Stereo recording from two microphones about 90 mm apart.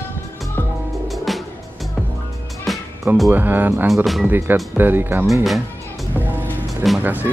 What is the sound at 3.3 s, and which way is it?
Speech, 20° right (ahead or behind).